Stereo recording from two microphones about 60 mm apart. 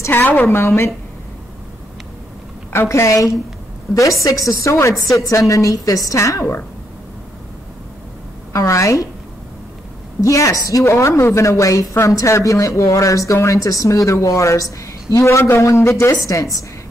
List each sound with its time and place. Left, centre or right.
0.1 s a woman's voice: left
2.7 s a woman's voice: left
3.9 s a woman's voice: left
5.1 s a woman's voice: left
8.5 s a woman's voice: left
10.2 s a woman's voice: left
13.6 s a woman's voice: left
16.2 s a woman's voice: left